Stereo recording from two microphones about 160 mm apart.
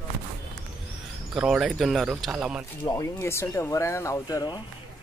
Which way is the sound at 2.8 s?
25° left (ahead or behind).